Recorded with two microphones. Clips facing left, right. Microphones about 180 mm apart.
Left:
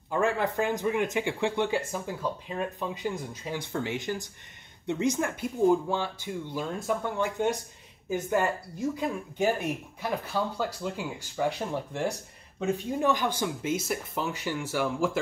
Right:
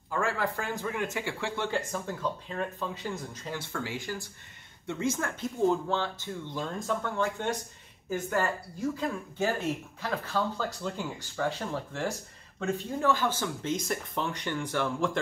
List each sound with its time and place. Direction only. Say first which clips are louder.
0.1 s speech: left 4 dB; 20° left (ahead or behind)